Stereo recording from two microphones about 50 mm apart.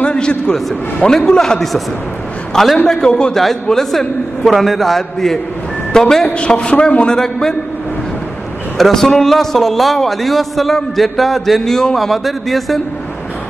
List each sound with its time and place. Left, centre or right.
0.0 s a sound: left
1.1 s a man's voice: centre
2.9 s a man's voice: centre
6.3 s a man's voice: left
7.1 s a man's voice: centre
8.7 s a man's voice: centre